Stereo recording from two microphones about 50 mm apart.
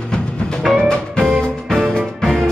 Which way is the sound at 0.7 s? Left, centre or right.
Centre.